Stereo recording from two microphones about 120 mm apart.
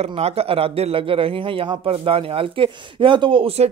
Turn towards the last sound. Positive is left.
turn(degrees=-50)  # may be behind; listen again after turning